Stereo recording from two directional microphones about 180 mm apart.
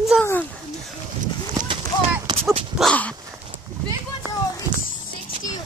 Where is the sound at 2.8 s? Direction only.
5° left (ahead or behind).